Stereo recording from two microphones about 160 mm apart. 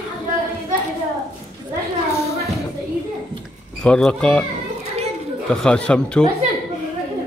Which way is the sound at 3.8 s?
5° left (ahead or behind).